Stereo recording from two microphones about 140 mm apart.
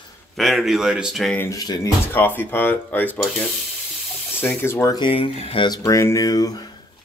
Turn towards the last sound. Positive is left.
turn(degrees=25)  # may be behind; listen again after turning